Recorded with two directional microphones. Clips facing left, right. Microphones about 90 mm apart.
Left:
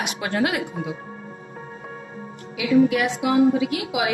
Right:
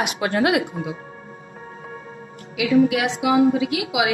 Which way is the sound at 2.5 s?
85° right.